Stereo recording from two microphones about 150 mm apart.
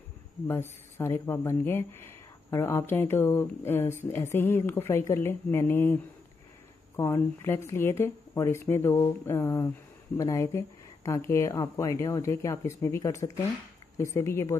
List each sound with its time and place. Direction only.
0.5 s speech: 15° left (ahead or behind)
7.0 s speech: 15° left (ahead or behind)